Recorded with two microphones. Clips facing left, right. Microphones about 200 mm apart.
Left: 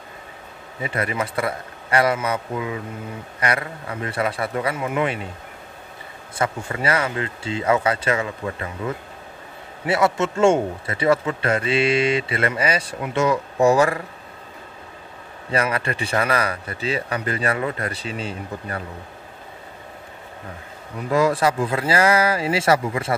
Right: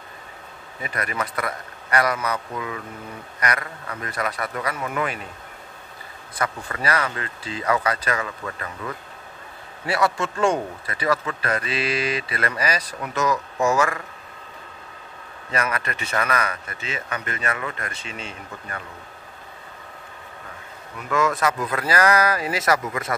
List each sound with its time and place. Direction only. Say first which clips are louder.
0.7 s speech: left 4 dB; 25° left (ahead or behind)
6.3 s speech: left 4 dB; 25° left (ahead or behind)
15.5 s speech: left 4 dB; 30° left (ahead or behind)
21.1 s speech: left 4 dB; 35° left (ahead or behind)